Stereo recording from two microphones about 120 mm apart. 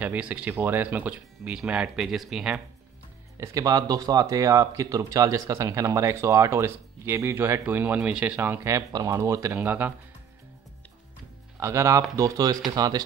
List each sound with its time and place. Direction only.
0.0 s speech: 15° right (ahead or behind)
3.3 s speech: 30° right (ahead or behind); by 9.9 s 15° right (ahead or behind)
11.5 s speech: 25° right (ahead or behind)